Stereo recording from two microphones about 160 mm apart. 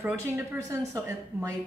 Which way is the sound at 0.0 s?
20° right (ahead or behind).